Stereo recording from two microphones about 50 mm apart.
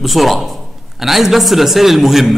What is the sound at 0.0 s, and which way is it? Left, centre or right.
A man's voice, centre.